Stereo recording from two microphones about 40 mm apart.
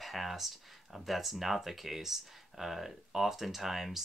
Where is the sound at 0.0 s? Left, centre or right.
Centre.